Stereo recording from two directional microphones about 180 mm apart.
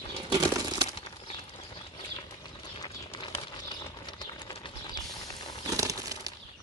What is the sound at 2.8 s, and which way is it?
Bird, 25° left (ahead or behind).